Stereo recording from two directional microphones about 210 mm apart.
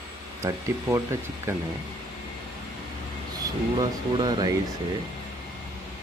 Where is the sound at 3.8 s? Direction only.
20° right (ahead or behind).